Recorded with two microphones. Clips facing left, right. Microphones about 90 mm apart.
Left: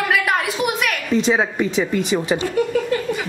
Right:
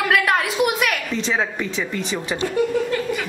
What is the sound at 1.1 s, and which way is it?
Speech, 10° left (ahead or behind).